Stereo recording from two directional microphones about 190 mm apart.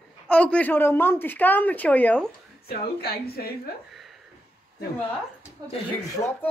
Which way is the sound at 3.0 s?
55° left (ahead or behind).